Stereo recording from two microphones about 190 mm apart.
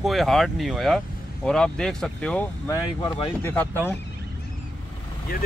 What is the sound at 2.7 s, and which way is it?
Speech, 15° left (ahead or behind).